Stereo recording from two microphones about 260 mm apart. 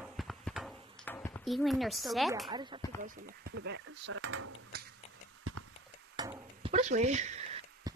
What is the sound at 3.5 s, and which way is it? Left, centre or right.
Speech, right.